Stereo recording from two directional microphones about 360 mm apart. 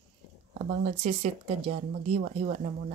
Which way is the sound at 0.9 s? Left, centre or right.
Centre.